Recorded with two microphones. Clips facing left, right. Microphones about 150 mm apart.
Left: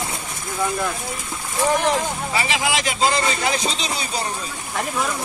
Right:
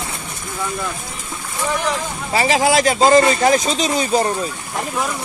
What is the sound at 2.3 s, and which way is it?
Speech, 40° right (ahead or behind).